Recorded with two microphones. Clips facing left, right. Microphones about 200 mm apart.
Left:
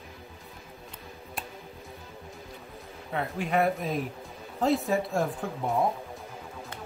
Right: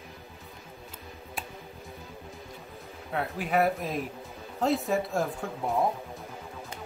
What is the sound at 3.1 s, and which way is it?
Speech, centre (ahead or behind).